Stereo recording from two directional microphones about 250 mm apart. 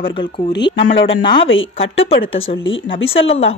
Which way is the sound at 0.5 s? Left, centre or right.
Left.